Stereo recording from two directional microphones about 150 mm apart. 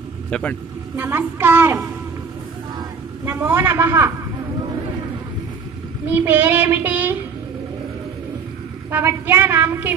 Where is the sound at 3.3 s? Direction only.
15° right (ahead or behind).